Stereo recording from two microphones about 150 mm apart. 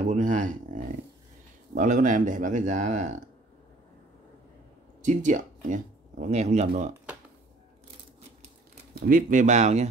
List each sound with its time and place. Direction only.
0.0 s a sound: 55° right (ahead or behind)
1.8 s speech: 55° right (ahead or behind)
5.0 s speech: 55° right (ahead or behind)
9.0 s speech: 65° right (ahead or behind)